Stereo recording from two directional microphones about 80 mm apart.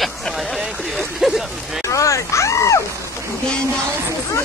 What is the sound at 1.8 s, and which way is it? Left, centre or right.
Speech, left.